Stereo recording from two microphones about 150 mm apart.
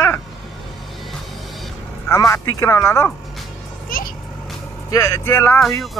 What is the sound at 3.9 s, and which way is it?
Vehicle, 65° left (ahead or behind).